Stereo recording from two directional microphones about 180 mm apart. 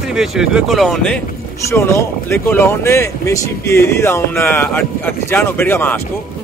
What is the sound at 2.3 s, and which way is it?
Speech, 15° left (ahead or behind).